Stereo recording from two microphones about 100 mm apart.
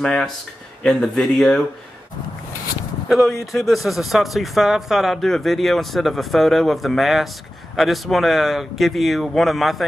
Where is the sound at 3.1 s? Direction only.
Centre (ahead or behind).